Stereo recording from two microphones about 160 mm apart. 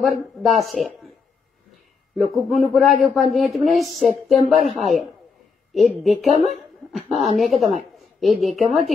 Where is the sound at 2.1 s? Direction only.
Centre (ahead or behind).